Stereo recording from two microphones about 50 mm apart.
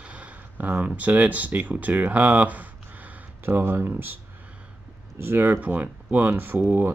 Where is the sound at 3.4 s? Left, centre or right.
Right.